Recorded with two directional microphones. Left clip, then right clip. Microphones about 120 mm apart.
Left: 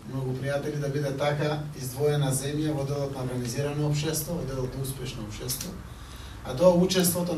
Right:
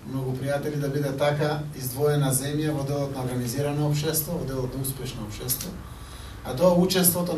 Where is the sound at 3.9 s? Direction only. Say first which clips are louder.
Right 3 dB; 25° right (ahead or behind).